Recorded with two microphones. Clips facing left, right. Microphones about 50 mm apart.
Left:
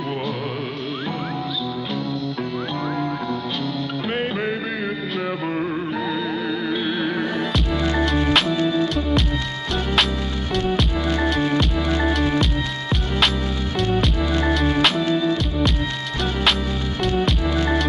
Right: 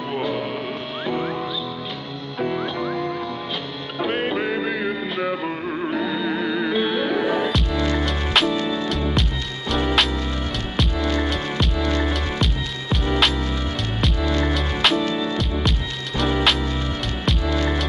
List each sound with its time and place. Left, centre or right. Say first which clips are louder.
4.0 s music: right 4 dB; centre
7.7 s music: left 2 dB; centre
8.3 s music: left 1 dB; centre
11.0 s music: left 1 dB; centre
11.2 s music: left 5 dB; centre
11.7 s music: left 1 dB; centre
12.0 s music: left 4 dB; centre
14.4 s music: left 5 dB; centre
17.0 s music: left 4 dB; centre